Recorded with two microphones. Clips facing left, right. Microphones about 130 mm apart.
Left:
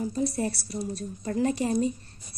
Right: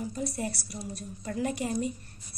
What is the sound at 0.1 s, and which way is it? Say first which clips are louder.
A woman's voice: left 5 dB; 30° left (ahead or behind).